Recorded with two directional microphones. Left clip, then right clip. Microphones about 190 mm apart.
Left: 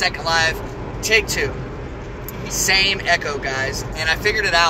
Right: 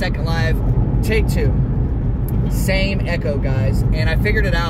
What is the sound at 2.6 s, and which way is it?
Speech, 10° left (ahead or behind).